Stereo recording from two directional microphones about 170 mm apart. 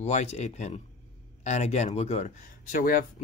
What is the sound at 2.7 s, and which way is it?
Speech, 55° left (ahead or behind).